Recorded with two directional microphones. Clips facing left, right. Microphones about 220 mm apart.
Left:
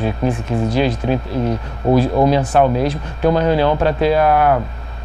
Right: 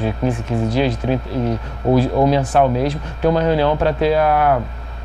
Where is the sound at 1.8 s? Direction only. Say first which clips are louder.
Left 1 dB; 30° left (ahead or behind).